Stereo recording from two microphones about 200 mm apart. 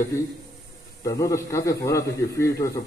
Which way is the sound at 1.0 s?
15° left (ahead or behind).